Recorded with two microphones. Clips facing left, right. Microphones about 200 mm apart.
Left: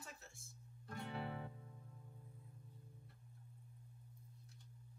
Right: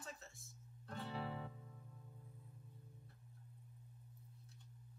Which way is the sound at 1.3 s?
15° left (ahead or behind).